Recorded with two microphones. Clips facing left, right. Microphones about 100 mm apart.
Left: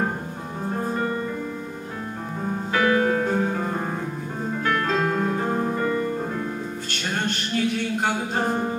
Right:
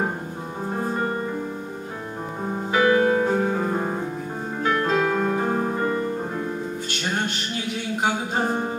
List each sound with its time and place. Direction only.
2.7 s music: 10° right (ahead or behind)
4.6 s piano: 15° right (ahead or behind)